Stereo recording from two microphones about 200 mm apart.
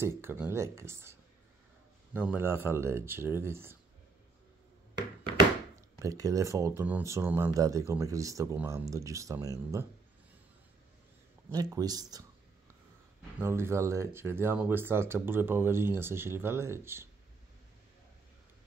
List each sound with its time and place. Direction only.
0.0 s speech: 10° right (ahead or behind)
2.1 s speech: 10° right (ahead or behind)
5.9 s speech: 15° right (ahead or behind)
11.5 s speech: 20° right (ahead or behind)